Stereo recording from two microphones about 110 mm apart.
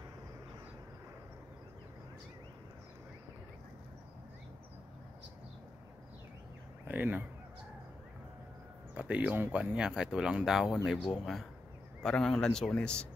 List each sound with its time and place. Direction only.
6.9 s speech: 15° right (ahead or behind)
8.9 s a man's voice: 10° right (ahead or behind); by 13.1 s 10° left (ahead or behind)